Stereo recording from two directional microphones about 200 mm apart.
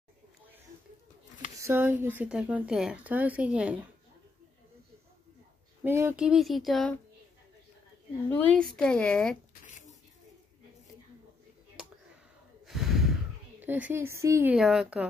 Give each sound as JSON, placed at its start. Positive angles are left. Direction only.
{"t": 1.6, "sound": "speech", "side_deg": -10}
{"t": 5.9, "sound": "speech", "side_deg": -10}
{"t": 8.3, "sound": "speech", "side_deg": 5}
{"t": 9.5, "sound": "a sound", "side_deg": 40}
{"t": 12.6, "sound": "snort", "side_deg": 0}
{"t": 13.6, "sound": "speech", "side_deg": -10}